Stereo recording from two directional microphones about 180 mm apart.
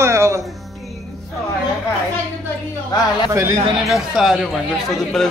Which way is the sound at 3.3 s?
15° right (ahead or behind).